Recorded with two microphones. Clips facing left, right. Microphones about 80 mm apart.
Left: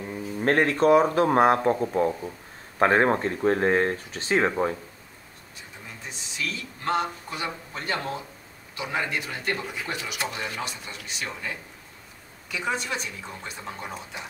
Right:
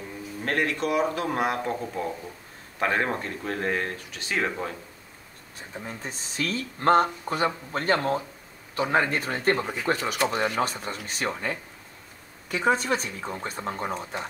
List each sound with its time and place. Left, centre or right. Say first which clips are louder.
0.5 s speech: left 7 dB; left
5.6 s speech: right 6 dB; right